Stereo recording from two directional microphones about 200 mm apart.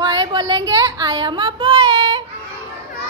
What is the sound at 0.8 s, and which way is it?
Child singing, 20° right (ahead or behind).